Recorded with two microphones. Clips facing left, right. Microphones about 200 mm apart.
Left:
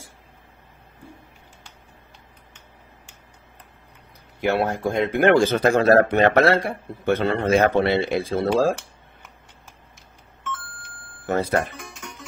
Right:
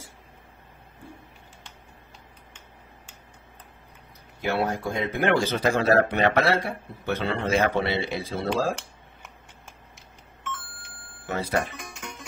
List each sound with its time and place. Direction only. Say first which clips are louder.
4.5 s speech: left 4 dB; 55° left (ahead or behind)
11.2 s speech: left 5 dB; 45° left (ahead or behind)